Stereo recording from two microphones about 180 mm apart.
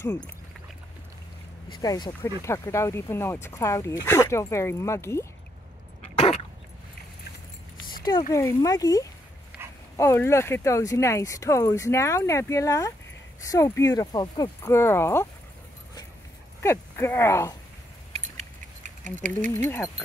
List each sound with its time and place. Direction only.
1.8 s speech: 20° left (ahead or behind)
6.1 s dog: 35° left (ahead or behind)
8.3 s speech: 15° left (ahead or behind)
16.6 s speech: 15° left (ahead or behind)
18.1 s keys jangling: 40° right (ahead or behind)
19.5 s speech: 15° left (ahead or behind)